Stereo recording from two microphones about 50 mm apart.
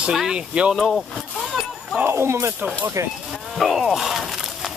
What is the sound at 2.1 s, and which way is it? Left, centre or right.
Speech, right.